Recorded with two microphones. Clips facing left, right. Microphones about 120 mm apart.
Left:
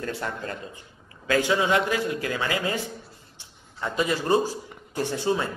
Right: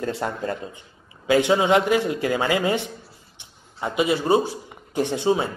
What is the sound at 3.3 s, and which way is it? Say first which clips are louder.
A man's voice: right 3 dB; 15° right (ahead or behind).